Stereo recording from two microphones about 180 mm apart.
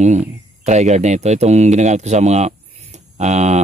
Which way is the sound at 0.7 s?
40° right (ahead or behind).